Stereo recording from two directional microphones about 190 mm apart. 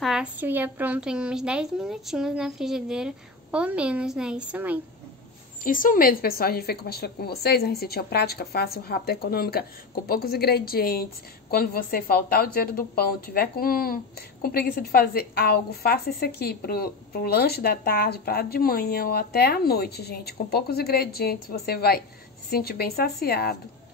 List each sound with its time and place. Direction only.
0.0 s a woman's voice: 5° right (ahead or behind)
5.6 s a woman's voice: 45° left (ahead or behind)